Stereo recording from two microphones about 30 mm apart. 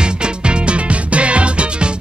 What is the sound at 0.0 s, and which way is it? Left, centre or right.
Music, right.